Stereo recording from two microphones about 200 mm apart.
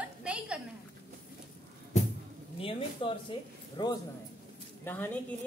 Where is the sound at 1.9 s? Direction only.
35° left (ahead or behind).